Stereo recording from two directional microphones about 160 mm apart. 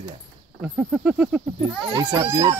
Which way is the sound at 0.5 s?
10° right (ahead or behind).